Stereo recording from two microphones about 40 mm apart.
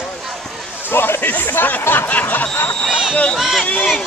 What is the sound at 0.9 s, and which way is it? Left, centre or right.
Music, left.